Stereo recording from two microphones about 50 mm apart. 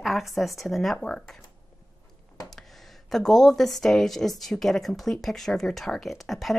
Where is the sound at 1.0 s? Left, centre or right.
Centre.